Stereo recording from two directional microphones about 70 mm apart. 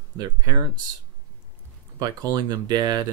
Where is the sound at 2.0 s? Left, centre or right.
Right.